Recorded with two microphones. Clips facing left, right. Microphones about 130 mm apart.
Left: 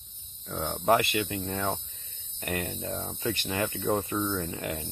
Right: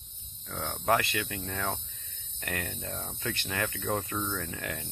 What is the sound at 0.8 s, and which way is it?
Speech, 5° left (ahead or behind).